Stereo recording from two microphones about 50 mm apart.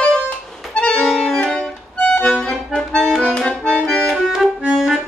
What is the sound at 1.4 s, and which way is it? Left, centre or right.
Music, centre.